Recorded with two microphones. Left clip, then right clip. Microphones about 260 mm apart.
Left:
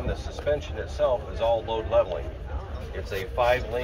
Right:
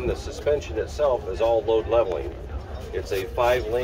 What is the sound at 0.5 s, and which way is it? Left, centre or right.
Speech, right.